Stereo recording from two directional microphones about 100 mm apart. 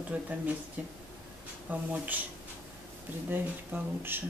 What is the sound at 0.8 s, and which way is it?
Speech, 15° right (ahead or behind).